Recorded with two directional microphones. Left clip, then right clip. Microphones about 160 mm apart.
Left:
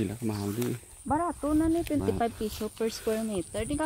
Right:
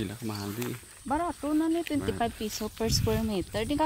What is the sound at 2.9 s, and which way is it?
Speech, 75° right (ahead or behind).